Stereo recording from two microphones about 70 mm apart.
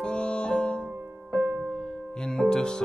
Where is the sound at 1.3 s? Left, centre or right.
Right.